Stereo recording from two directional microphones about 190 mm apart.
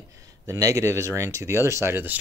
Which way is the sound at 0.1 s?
15° right (ahead or behind).